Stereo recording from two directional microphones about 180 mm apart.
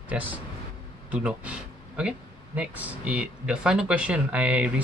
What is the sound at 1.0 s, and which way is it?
Speech, 5° right (ahead or behind).